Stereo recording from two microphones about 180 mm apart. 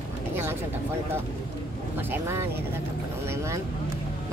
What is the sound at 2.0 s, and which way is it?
Speech, 10° right (ahead or behind).